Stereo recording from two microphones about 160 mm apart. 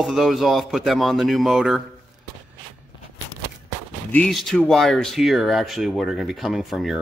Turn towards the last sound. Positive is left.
turn(degrees=0)  # may be behind; listen again after turning